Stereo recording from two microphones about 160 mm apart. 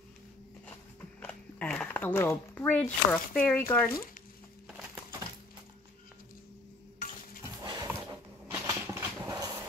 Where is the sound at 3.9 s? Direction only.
65° left (ahead or behind).